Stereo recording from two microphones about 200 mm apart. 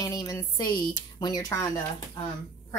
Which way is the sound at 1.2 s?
20° left (ahead or behind).